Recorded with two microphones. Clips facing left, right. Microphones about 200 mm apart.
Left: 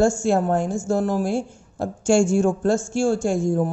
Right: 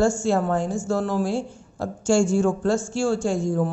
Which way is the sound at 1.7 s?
50° left (ahead or behind).